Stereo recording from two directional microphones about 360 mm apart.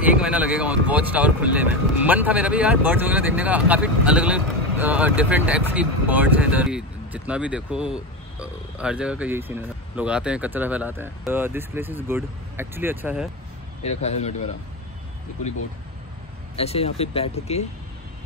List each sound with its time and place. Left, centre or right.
0.2 s speech: centre
13.8 s speech: centre
16.5 s speech: centre